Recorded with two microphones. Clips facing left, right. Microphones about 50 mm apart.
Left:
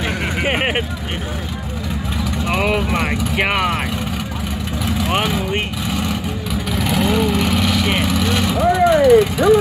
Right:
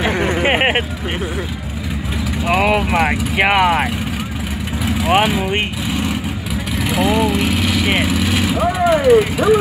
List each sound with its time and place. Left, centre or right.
0.0 s a sound: right
2.4 s vehicle: centre
4.8 s vehicle: centre